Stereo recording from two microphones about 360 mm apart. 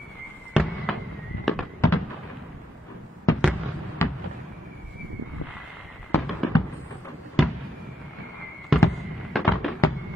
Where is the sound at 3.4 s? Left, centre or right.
Centre.